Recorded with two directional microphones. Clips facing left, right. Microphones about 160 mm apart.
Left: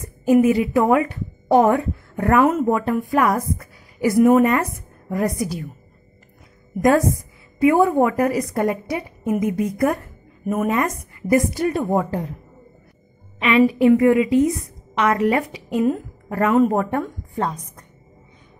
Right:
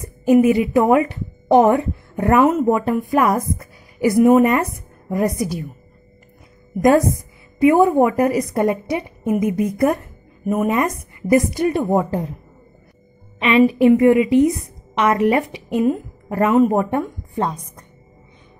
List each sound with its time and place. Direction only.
0.3 s a woman's voice: 20° right (ahead or behind)
6.8 s a woman's voice: 20° right (ahead or behind)
10.4 s a woman's voice: 10° right (ahead or behind)
10.7 s a woman's voice: 20° right (ahead or behind)
13.4 s a woman's voice: 25° right (ahead or behind)